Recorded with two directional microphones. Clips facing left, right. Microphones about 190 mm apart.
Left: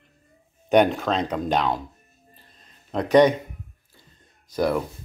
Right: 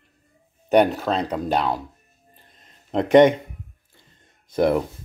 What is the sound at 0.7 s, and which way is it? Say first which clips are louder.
Speech: right 1 dB; 5° right (ahead or behind).